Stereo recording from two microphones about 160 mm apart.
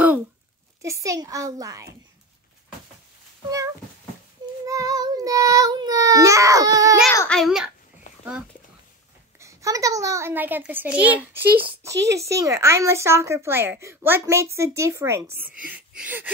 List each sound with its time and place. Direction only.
0.8 s child singing: 20° right (ahead or behind)
3.4 s child singing: 20° right (ahead or behind)
7.1 s a child's voice: 10° left (ahead or behind)
9.4 s a woman's voice: 20° right (ahead or behind)
11.9 s speech: 90° right
12.2 s a woman's voice: 20° right (ahead or behind)